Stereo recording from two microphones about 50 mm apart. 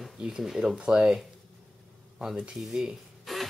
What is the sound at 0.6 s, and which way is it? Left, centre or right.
Speech, centre.